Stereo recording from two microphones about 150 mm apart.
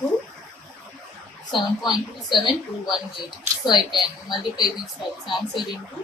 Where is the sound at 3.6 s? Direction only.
30° left (ahead or behind).